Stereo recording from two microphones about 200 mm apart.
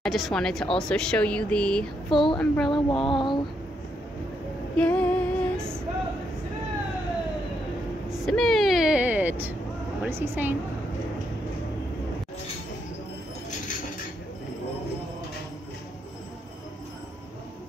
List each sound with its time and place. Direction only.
0.0 s speech: centre (ahead or behind)
2.7 s a sound: 25° left (ahead or behind)
4.7 s female singing: 5° left (ahead or behind)
8.1 s a woman's voice: centre (ahead or behind)